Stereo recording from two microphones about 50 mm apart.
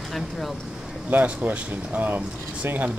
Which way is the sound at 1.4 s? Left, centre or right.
Right.